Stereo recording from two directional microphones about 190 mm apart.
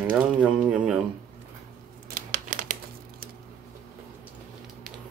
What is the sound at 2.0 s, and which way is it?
Crumpling, 45° right (ahead or behind).